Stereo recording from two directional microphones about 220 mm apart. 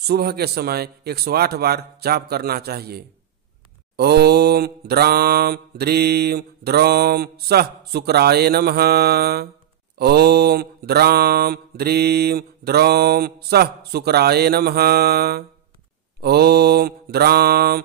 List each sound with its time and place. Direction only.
0.0 s mantra: 45° right (ahead or behind)